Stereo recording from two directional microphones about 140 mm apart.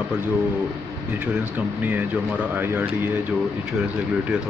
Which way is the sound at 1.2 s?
10° right (ahead or behind).